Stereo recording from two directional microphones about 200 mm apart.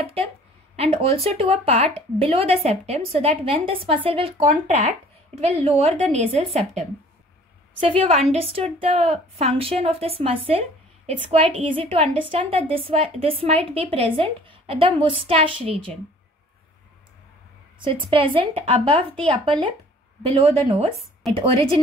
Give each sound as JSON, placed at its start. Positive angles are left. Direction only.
{"t": 0.0, "sound": "a woman's voice", "side_deg": -30}
{"t": 4.4, "sound": "speech", "side_deg": -40}
{"t": 8.0, "sound": "a woman's voice", "side_deg": -35}
{"t": 18.1, "sound": "a woman's voice", "side_deg": -25}
{"t": 20.2, "sound": "a woman's voice", "side_deg": -30}